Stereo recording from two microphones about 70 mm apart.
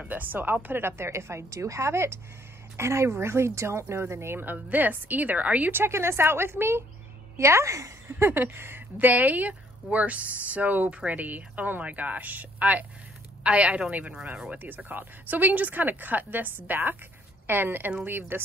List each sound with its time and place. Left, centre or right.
0.1 s a woman's voice: right
8.1 s speech: right